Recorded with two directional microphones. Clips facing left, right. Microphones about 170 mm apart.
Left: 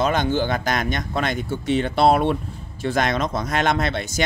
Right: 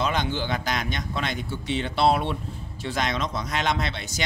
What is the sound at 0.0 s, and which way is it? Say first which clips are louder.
Speech: left 6 dB; 50° left (ahead or behind).